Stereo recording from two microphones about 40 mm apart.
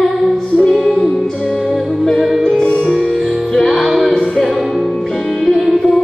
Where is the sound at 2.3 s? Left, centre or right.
Centre.